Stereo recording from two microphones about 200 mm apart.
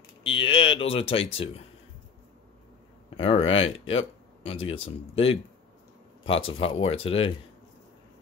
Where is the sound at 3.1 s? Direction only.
25° left (ahead or behind).